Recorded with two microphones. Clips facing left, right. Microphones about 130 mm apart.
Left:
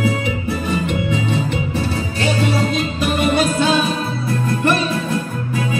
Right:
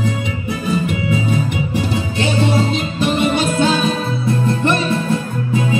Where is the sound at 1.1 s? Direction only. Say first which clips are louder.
Right 1 dB; 10° right (ahead or behind).